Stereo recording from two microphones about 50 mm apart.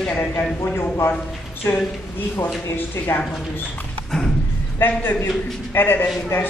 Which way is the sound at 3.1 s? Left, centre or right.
Left.